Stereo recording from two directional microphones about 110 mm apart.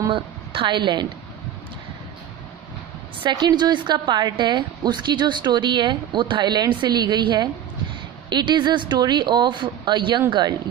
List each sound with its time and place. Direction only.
0.1 s a woman's voice: 50° right (ahead or behind)
3.2 s a woman's voice: 40° right (ahead or behind)